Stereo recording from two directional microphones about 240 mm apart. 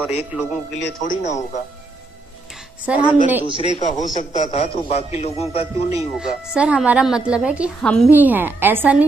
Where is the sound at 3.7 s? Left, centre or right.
Left.